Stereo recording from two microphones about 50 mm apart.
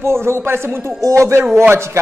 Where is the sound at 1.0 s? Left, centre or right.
Right.